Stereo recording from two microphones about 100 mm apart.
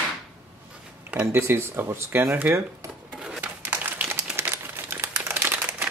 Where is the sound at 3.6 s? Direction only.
15° right (ahead or behind).